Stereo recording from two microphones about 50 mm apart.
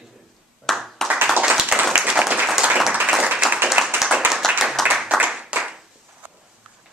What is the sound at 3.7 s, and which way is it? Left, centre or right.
Clapping, centre.